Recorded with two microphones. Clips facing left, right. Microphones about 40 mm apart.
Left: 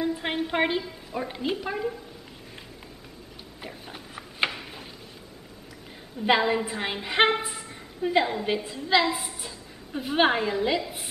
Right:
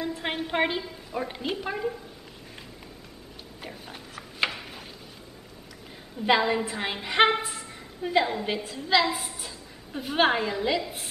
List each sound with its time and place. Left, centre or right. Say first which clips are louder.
0.0 s a woman's voice: left 3 dB; centre
3.6 s a woman's voice: left 1 dB; centre
4.5 s a sound: even; centre
6.2 s a woman's voice: even; centre